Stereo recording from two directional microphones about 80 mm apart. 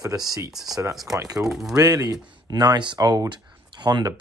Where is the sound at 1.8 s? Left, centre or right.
Right.